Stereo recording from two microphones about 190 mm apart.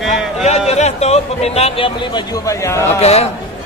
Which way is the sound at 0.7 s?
35° left (ahead or behind).